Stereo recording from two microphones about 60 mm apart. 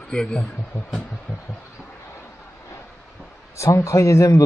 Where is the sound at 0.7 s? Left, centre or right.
Left.